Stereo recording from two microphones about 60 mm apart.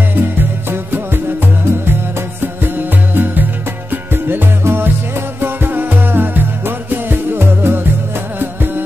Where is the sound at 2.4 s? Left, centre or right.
Right.